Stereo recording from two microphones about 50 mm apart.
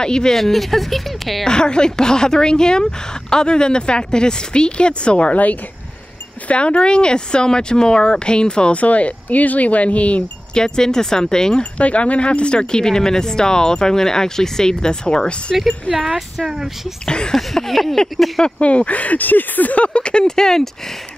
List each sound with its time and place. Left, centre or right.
0.0 s speech: centre
1.5 s speech: centre
10.6 s speech: centre
11.8 s speech: left
15.5 s speech: centre
17.0 s speech: centre
17.4 s speech: centre
18.4 s speech: left